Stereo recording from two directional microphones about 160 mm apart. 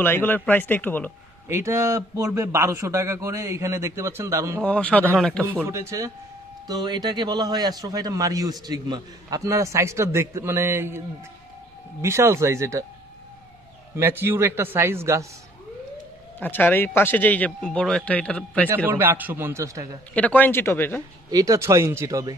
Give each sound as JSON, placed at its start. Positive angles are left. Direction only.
{"t": 0.0, "sound": "speech", "side_deg": 15}
{"t": 1.5, "sound": "a man's voice", "side_deg": -15}
{"t": 4.6, "sound": "speech", "side_deg": 10}
{"t": 5.4, "sound": "a man's voice", "side_deg": -15}
{"t": 12.0, "sound": "a man's voice", "side_deg": -15}
{"t": 13.9, "sound": "a man's voice", "side_deg": -15}
{"t": 16.3, "sound": "speech", "side_deg": 10}
{"t": 18.9, "sound": "a man's voice", "side_deg": -10}
{"t": 20.2, "sound": "speech", "side_deg": 10}
{"t": 21.3, "sound": "a man's voice", "side_deg": -25}